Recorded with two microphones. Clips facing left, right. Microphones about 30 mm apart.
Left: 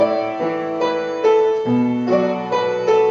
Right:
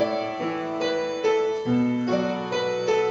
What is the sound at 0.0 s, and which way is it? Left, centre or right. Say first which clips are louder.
Music: left 7 dB; centre.